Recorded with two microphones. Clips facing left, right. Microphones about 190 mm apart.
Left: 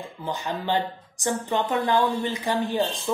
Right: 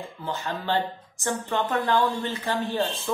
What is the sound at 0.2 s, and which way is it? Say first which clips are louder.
A woman's voice: left 2 dB; 15° left (ahead or behind).